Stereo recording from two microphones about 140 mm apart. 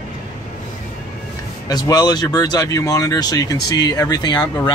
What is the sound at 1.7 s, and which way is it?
Speech, 30° left (ahead or behind).